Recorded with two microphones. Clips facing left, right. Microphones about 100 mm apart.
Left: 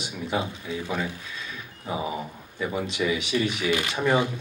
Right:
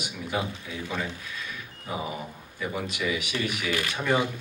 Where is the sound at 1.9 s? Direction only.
25° left (ahead or behind).